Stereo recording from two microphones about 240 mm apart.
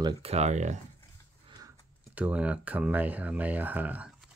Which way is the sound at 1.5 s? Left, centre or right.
Centre.